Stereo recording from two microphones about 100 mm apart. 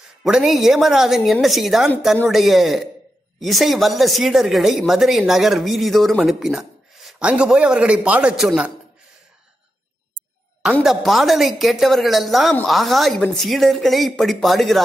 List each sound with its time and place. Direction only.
0.2 s a man's voice: 5° right (ahead or behind)
10.6 s speech: 5° right (ahead or behind)